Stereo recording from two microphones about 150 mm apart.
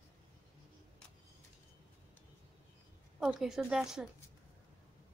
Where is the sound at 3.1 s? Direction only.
5° right (ahead or behind).